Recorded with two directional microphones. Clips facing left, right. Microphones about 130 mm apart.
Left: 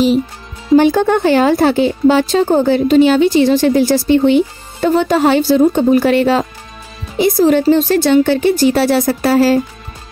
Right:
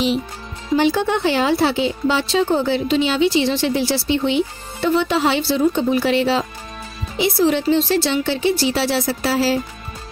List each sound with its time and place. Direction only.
0.7 s speech: 50° left (ahead or behind)